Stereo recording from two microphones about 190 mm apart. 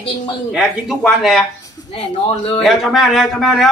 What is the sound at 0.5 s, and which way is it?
Speech, centre (ahead or behind).